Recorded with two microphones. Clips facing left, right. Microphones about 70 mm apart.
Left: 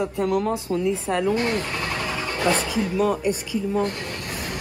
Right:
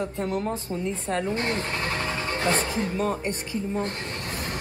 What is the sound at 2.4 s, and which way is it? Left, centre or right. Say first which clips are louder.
Speech: left 4 dB; right.